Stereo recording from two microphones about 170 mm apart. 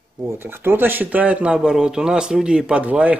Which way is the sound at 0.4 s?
15° right (ahead or behind).